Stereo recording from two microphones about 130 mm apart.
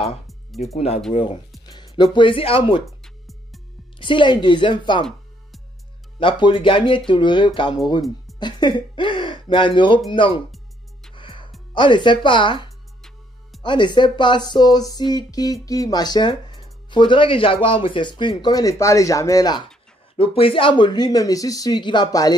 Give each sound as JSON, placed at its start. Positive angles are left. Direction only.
{"t": 0.7, "sound": "speech", "side_deg": 55}
{"t": 1.7, "sound": "music", "side_deg": 30}
{"t": 2.1, "sound": "speech", "side_deg": 45}
{"t": 2.8, "sound": "music", "side_deg": 0}
{"t": 4.0, "sound": "speech", "side_deg": 40}
{"t": 6.1, "sound": "speech", "side_deg": 40}
{"t": 10.5, "sound": "music", "side_deg": 5}
{"t": 11.1, "sound": "music", "side_deg": 40}
{"t": 11.7, "sound": "speech", "side_deg": 40}
{"t": 20.2, "sound": "speech", "side_deg": 45}